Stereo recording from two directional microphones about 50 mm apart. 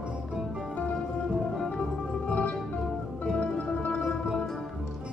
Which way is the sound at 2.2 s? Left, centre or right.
Left.